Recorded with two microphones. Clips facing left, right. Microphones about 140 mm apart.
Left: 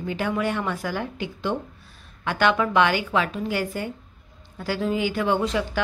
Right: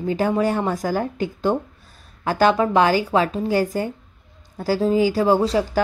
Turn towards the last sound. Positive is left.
turn(degrees=-40)  # may be behind; listen again after turning